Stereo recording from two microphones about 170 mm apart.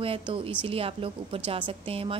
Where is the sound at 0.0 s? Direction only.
30° right (ahead or behind).